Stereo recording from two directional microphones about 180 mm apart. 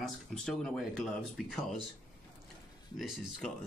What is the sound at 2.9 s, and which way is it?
Speech, centre (ahead or behind).